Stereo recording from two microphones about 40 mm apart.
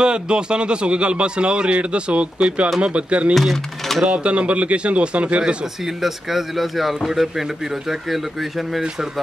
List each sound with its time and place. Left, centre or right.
0.0 s a man's voice: right
3.3 s speech: centre
4.0 s speech: right
5.9 s speech: centre